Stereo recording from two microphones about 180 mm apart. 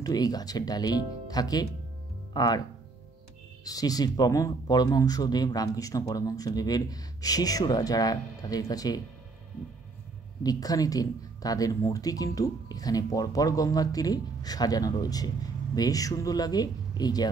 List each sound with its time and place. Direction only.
0.0 s speech: 20° left (ahead or behind)
3.6 s speech: 20° left (ahead or behind)
10.4 s speech: 20° left (ahead or behind)